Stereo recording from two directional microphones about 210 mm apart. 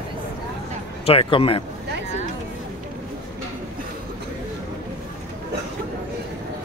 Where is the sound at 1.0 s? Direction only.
25° left (ahead or behind).